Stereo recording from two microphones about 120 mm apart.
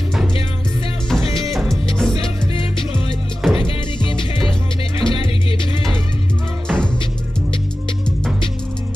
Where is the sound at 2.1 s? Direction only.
45° left (ahead or behind).